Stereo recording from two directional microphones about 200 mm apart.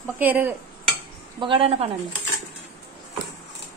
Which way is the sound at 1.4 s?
25° right (ahead or behind).